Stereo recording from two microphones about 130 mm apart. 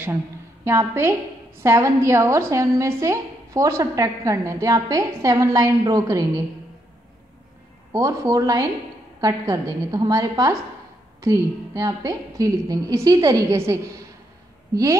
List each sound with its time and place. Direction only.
0.7 s a woman's voice: 20° right (ahead or behind)
7.9 s a woman's voice: 25° right (ahead or behind)